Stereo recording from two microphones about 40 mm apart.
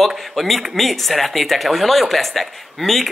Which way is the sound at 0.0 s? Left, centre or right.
Centre.